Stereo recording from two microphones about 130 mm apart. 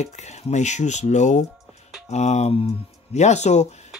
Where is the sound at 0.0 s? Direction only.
60° left (ahead or behind).